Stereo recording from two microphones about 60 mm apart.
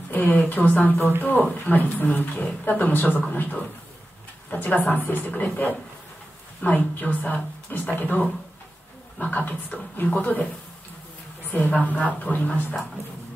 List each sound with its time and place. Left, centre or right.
0.1 s a woman's voice: left
5.3 s a woman's voice: left
9.2 s a woman's voice: left
11.7 s a woman's voice: left